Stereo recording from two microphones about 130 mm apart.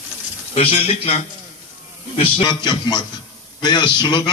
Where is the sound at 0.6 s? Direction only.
50° left (ahead or behind).